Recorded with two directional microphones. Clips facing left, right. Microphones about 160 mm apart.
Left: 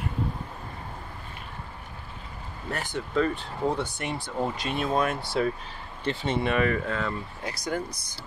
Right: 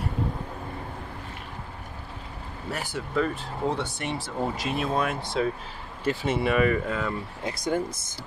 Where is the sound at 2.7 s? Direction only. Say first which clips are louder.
Left 1 dB; 5° right (ahead or behind).